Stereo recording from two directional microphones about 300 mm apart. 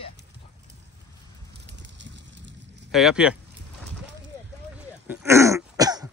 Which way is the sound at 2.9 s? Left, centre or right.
Centre.